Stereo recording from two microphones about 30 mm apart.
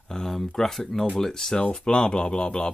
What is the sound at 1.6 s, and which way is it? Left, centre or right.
Speech, left.